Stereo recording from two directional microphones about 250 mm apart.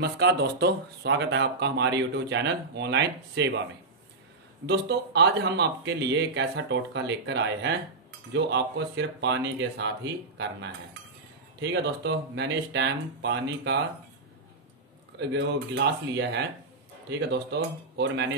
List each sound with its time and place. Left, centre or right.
0.0 s speech: right
4.6 s speech: right
15.1 s speech: right